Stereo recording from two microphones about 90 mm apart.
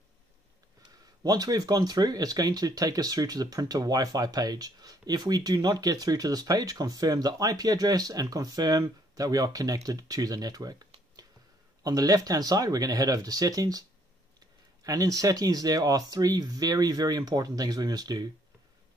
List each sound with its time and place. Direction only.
1.2 s speech: 45° right (ahead or behind)